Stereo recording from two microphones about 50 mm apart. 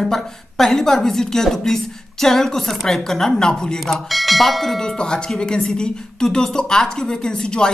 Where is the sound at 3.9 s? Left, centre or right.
Centre.